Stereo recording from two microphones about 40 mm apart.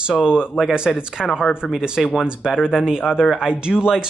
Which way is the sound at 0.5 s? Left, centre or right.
Centre.